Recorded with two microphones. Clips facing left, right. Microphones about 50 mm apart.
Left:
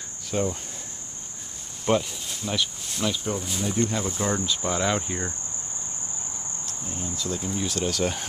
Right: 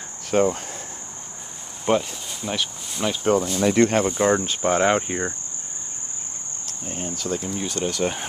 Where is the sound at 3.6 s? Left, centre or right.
Right.